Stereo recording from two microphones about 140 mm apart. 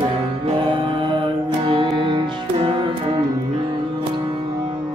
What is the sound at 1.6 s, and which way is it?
Music, 40° right (ahead or behind).